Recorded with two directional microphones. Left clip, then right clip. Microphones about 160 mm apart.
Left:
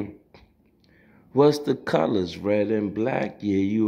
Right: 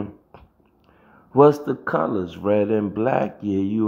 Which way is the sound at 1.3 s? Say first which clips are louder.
Right 4 dB; 25° right (ahead or behind).